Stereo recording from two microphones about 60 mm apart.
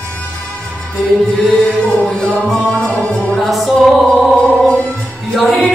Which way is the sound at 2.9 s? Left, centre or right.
Left.